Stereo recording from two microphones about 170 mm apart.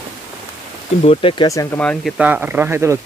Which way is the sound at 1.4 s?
20° left (ahead or behind).